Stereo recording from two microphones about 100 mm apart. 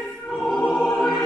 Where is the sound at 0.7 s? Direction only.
20° left (ahead or behind).